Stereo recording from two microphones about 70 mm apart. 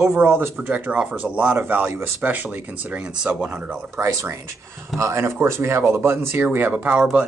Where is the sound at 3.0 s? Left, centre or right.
Centre.